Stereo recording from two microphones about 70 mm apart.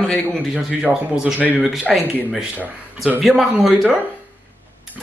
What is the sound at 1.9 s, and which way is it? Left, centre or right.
Speech, centre.